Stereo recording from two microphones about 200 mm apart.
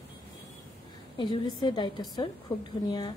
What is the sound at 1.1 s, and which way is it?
Speech, 25° left (ahead or behind).